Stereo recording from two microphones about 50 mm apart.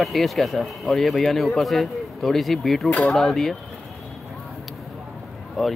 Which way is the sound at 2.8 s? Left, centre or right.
Left.